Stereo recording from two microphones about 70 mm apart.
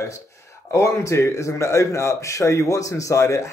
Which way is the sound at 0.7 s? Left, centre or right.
Left.